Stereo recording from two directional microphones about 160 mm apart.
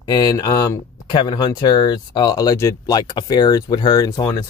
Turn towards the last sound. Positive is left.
turn(degrees=25)  # may be behind; listen again after turning